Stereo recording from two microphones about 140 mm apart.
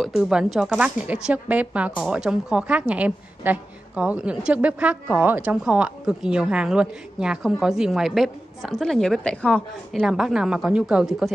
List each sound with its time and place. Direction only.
0.0 s a woman's voice: 5° right (ahead or behind)